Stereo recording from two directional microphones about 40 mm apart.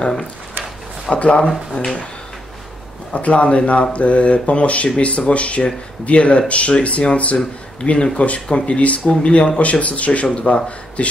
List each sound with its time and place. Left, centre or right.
1.1 s speech: left
3.2 s speech: left